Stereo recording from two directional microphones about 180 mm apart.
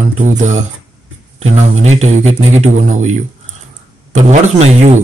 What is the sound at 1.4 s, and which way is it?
Speech, 40° right (ahead or behind).